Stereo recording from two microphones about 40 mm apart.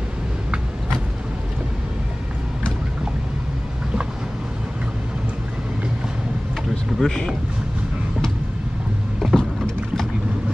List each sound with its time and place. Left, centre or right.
7.0 s speech: centre
9.2 s vehicle: centre